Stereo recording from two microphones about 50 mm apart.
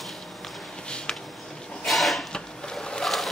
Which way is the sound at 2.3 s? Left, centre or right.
Centre.